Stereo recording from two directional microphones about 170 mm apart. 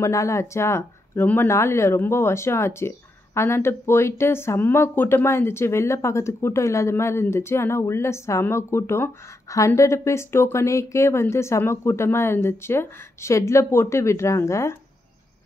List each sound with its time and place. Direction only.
0.0 s speech: 15° left (ahead or behind)